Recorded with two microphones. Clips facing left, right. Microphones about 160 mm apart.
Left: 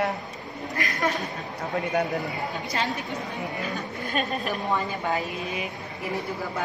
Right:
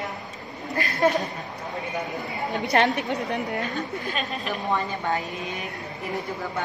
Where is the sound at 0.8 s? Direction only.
30° right (ahead or behind).